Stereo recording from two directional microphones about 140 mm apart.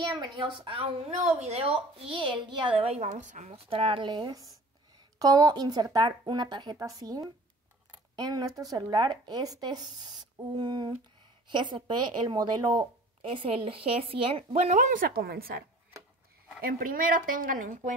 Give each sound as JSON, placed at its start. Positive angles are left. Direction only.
{"t": 0.1, "sound": "a woman's voice", "side_deg": -35}
{"t": 16.6, "sound": "a woman's voice", "side_deg": -90}